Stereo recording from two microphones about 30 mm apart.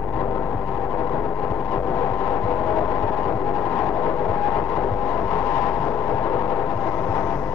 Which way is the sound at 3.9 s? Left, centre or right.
Left.